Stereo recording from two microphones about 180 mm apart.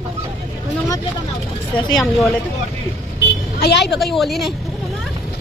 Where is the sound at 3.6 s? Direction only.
70° left (ahead or behind).